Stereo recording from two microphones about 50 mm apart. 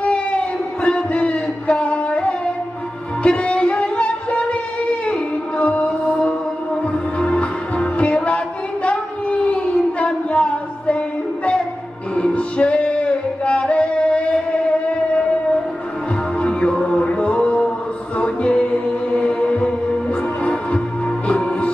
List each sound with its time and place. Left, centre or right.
0.0 s a sound: left
3.3 s music: left
5.6 s music: left
8.8 s a sound: left
12.2 s music: left
16.3 s music: left
21.3 s music: centre